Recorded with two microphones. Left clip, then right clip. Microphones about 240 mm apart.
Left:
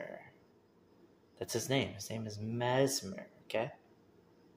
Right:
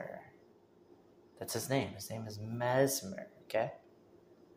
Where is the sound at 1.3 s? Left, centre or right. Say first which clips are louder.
Left 1 dB; centre.